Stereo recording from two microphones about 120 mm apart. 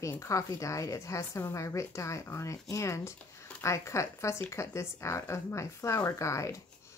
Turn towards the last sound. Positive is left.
turn(degrees=25)  # may be behind; listen again after turning